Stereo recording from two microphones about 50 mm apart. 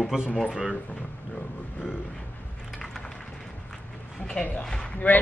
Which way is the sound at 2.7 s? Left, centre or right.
Centre.